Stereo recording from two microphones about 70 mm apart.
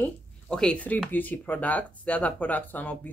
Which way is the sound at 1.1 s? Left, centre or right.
Left.